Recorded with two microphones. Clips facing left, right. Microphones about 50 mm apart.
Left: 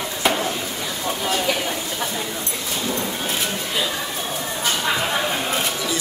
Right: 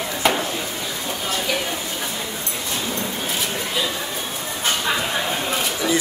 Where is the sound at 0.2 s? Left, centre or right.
Centre.